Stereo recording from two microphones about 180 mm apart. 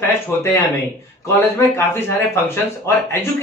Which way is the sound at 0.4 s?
15° left (ahead or behind).